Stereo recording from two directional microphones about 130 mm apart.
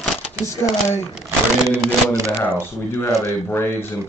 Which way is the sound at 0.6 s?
20° left (ahead or behind).